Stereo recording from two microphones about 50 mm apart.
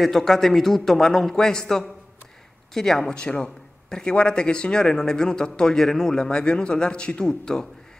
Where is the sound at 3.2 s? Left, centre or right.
Centre.